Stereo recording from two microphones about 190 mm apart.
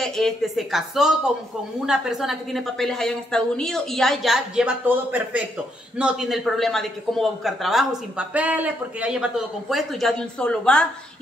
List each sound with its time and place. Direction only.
0.0 s speech: centre (ahead or behind)